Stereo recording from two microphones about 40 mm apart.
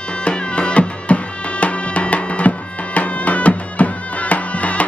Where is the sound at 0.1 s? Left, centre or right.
Left.